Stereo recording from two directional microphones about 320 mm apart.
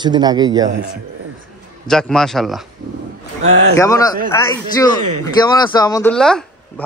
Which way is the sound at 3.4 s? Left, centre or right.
Right.